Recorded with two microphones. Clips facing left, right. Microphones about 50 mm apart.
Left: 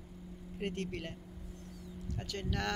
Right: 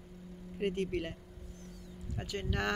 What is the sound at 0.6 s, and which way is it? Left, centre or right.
Speech, centre.